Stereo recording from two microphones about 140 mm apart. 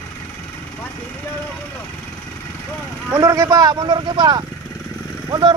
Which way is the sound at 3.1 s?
25° right (ahead or behind).